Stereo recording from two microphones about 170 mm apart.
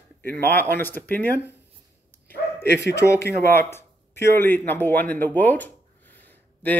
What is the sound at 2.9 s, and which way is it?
Speech, 15° left (ahead or behind).